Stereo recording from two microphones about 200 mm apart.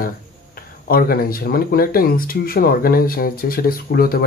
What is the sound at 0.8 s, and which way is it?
Speech, 50° left (ahead or behind).